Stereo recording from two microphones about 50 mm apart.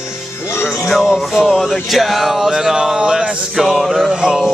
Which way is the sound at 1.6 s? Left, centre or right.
Centre.